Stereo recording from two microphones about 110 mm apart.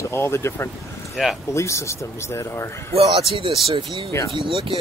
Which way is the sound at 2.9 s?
55° right (ahead or behind).